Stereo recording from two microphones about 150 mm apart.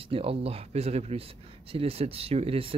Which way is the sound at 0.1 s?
40° right (ahead or behind).